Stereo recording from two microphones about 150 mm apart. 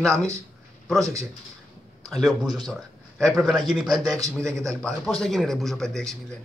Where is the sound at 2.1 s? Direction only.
Centre (ahead or behind).